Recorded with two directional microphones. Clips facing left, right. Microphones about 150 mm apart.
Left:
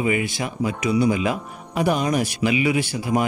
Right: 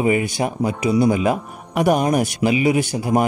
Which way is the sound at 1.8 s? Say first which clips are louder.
Right 4 dB; 55° right (ahead or behind).